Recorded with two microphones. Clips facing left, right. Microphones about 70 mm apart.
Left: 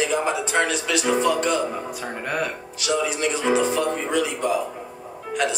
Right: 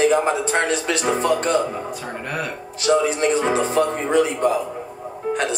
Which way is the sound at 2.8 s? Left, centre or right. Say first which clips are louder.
Right 6 dB; right.